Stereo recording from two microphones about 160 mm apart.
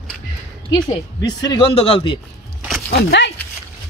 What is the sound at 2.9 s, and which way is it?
Speech, 90° left.